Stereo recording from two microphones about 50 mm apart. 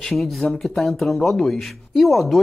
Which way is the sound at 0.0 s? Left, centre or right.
Centre.